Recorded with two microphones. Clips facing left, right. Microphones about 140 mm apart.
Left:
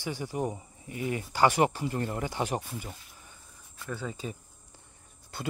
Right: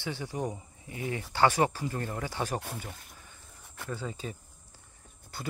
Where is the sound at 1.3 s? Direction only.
15° left (ahead or behind).